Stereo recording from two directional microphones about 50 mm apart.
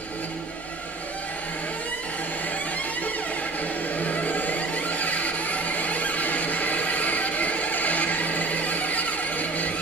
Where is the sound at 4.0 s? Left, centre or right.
Left.